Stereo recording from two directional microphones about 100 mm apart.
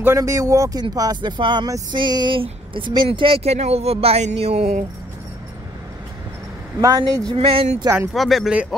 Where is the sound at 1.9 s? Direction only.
45° right (ahead or behind).